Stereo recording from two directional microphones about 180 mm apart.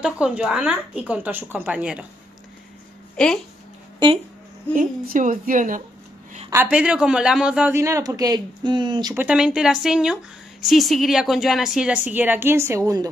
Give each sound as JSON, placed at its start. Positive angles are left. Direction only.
{"t": 0.0, "sound": "a man's voice", "side_deg": -5}
{"t": 3.2, "sound": "speech", "side_deg": 5}
{"t": 4.7, "sound": "a woman's voice", "side_deg": -50}
{"t": 6.5, "sound": "a man's voice", "side_deg": -10}
{"t": 9.1, "sound": "a man's voice", "side_deg": -5}